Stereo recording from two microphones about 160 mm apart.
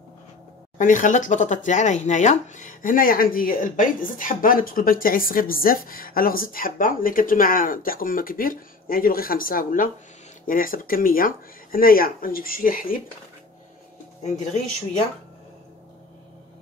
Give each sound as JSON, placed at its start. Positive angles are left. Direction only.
{"t": 0.7, "sound": "speech", "side_deg": 55}